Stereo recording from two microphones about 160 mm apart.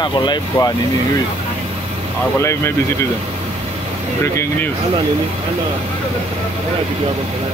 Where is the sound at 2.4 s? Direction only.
15° left (ahead or behind).